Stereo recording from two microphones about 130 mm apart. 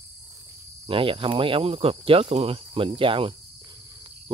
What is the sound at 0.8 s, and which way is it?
Speech, 45° right (ahead or behind).